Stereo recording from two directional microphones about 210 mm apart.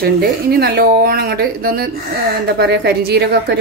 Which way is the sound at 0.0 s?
50° right (ahead or behind).